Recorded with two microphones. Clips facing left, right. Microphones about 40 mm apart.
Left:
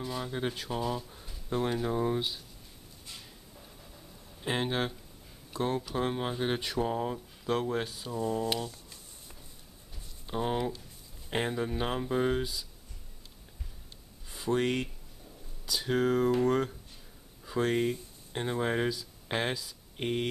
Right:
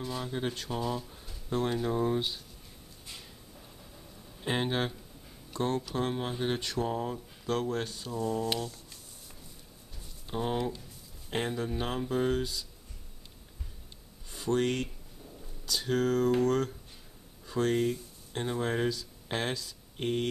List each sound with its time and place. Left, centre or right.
0.0 s speech: centre
3.1 s a sound: centre
4.4 s speech: centre
9.9 s a sound: centre
11.2 s speech: centre
14.3 s speech: centre